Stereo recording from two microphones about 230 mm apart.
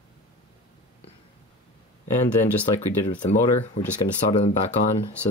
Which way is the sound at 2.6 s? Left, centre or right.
Centre.